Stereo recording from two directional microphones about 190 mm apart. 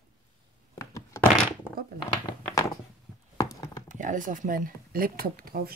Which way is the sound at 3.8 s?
40° right (ahead or behind).